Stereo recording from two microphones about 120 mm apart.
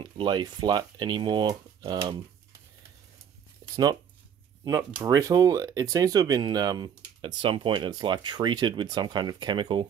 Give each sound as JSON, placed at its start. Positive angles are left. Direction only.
{"t": 0.0, "sound": "speech", "side_deg": -40}
{"t": 3.7, "sound": "speech", "side_deg": -35}
{"t": 5.0, "sound": "speech", "side_deg": -30}